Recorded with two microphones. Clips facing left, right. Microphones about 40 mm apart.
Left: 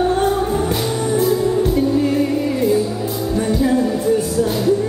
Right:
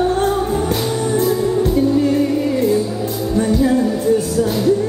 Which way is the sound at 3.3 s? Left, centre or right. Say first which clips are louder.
Right 2 dB; centre.